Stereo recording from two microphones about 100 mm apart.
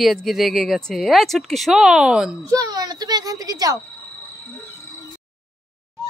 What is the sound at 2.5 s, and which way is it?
A child's voice, 40° right (ahead or behind).